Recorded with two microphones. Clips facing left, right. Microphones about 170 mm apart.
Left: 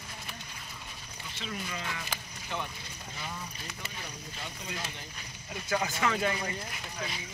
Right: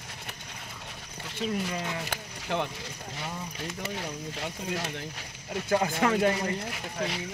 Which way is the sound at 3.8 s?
75° right (ahead or behind).